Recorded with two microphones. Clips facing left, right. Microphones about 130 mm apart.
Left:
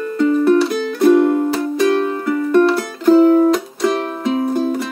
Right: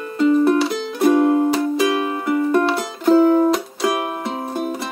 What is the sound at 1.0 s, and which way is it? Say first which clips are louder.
Music: left 2 dB; 20° right (ahead or behind).